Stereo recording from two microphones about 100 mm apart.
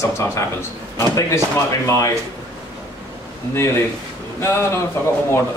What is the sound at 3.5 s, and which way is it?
Speech, 25° left (ahead or behind).